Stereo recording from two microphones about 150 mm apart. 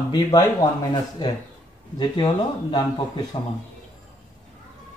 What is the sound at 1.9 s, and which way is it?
Speech, 30° left (ahead or behind).